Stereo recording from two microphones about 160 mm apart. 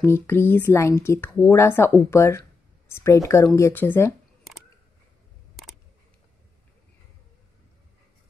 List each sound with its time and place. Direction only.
0.0 s speech: 15° left (ahead or behind)